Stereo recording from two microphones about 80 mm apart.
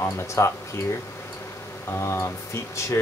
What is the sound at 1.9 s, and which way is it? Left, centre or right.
Speech, left.